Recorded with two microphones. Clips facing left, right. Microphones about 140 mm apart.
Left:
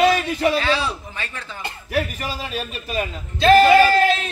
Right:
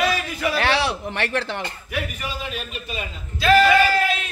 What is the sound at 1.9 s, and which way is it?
Speech, 40° left (ahead or behind).